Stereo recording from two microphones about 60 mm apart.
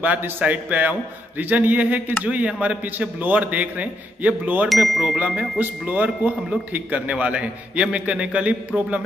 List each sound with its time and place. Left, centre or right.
0.0 s speech: right
4.6 s speech: centre
5.1 s speech: right